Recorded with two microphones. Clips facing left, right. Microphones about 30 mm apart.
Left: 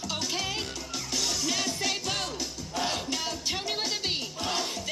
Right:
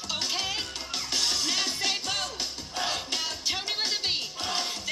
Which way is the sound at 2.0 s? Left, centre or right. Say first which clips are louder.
Even; centre.